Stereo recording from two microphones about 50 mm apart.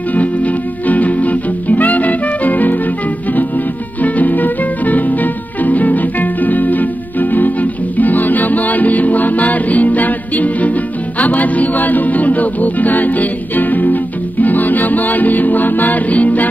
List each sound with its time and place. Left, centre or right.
0.1 s music: left
4.0 s music: left